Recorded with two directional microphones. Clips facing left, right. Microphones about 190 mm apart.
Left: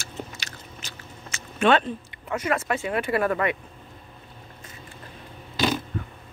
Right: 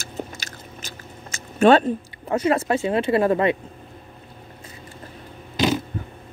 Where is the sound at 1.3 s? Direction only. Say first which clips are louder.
Right 6 dB; 40° right (ahead or behind).